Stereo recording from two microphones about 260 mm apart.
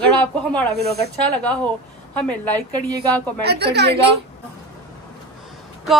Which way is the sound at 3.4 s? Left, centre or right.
Right.